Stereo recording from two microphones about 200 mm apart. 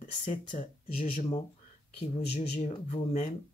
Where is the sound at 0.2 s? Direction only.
40° left (ahead or behind).